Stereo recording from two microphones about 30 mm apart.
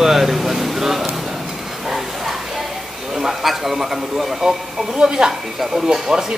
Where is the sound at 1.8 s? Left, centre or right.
Centre.